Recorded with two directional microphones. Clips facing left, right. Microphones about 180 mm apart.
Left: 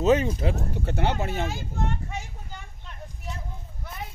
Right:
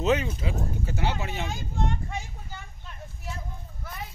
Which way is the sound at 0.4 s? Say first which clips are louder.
Left 3 dB; 65° left (ahead or behind).